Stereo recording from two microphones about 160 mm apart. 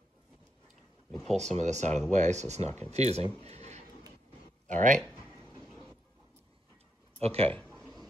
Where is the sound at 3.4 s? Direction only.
45° right (ahead or behind).